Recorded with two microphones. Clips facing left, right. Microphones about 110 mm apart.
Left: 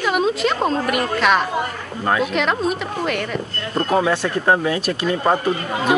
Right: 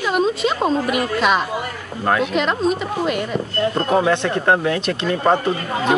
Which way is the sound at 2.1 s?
Centre (ahead or behind).